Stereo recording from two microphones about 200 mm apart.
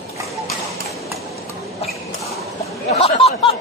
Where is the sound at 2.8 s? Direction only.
30° left (ahead or behind).